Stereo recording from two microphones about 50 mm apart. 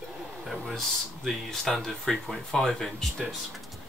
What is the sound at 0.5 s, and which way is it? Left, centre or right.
Speech, centre.